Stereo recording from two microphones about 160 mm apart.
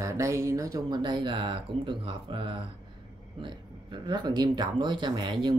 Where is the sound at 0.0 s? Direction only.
20° right (ahead or behind).